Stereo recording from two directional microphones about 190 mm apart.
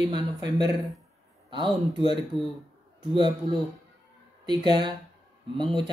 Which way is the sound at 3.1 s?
25° right (ahead or behind).